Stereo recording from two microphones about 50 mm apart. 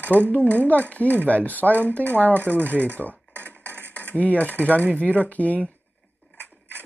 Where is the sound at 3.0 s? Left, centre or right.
Left.